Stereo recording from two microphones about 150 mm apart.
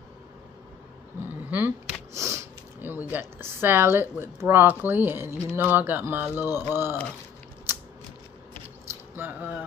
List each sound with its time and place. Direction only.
1.2 s a sound: 15° right (ahead or behind)
2.1 s sniff: 20° right (ahead or behind)
3.1 s speech: 15° right (ahead or behind)
9.1 s speech: 10° right (ahead or behind)